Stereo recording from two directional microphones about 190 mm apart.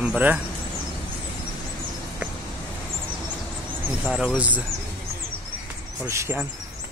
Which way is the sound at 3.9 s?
5° right (ahead or behind).